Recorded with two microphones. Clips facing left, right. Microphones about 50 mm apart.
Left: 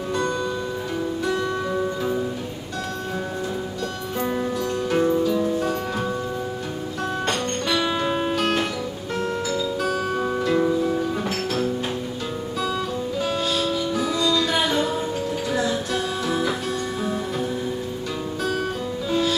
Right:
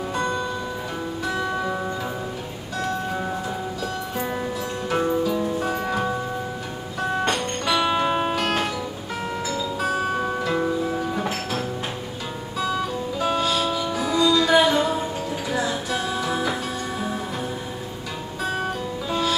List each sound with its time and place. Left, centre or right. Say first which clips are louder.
0.1 s music: left 3 dB; centre
4.8 s music: left 1 dB; centre
18.4 s music: right 1 dB; centre